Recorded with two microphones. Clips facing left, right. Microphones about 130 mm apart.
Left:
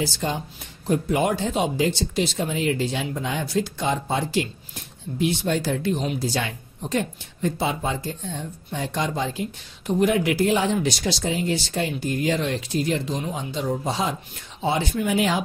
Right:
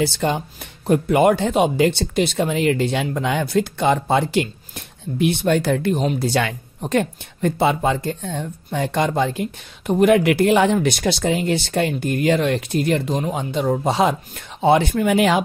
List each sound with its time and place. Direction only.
0.0 s speech: 65° right (ahead or behind)